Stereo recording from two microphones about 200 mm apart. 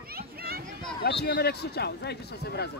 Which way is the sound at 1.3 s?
50° left (ahead or behind).